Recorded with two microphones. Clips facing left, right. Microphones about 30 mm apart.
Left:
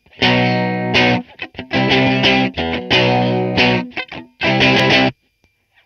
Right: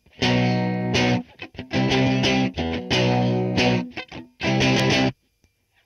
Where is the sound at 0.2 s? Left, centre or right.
Left.